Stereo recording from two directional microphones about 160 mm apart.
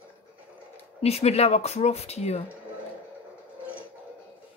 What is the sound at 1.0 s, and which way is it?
A woman's voice, 40° left (ahead or behind).